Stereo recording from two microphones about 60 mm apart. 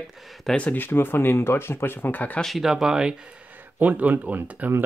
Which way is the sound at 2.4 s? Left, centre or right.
Centre.